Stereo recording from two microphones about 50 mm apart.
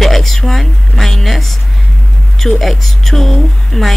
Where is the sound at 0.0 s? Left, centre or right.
Centre.